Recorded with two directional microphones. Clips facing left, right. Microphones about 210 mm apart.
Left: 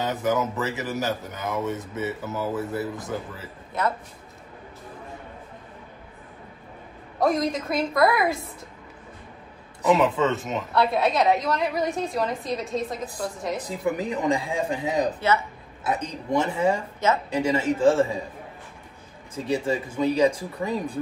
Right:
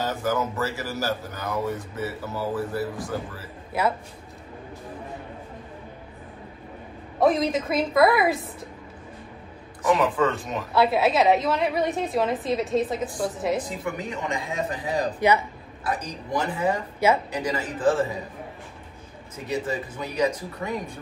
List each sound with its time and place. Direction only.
0.0 s speech: 20° left (ahead or behind)
3.8 s speech: 5° right (ahead or behind)
7.2 s a woman's voice: centre (ahead or behind)
9.8 s speech: 20° left (ahead or behind)
10.5 s a woman's voice: 5° right (ahead or behind)
13.6 s speech: 35° left (ahead or behind)
15.1 s speech: 15° right (ahead or behind)
15.8 s speech: 25° left (ahead or behind)
19.3 s speech: 30° left (ahead or behind)